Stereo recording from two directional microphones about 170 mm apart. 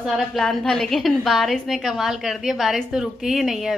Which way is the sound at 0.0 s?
Centre (ahead or behind).